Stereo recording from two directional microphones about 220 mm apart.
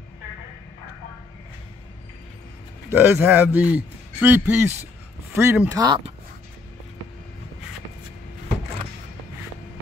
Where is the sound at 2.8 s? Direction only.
10° right (ahead or behind).